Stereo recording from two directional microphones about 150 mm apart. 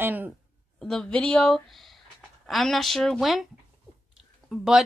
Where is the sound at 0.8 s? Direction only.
5° left (ahead or behind).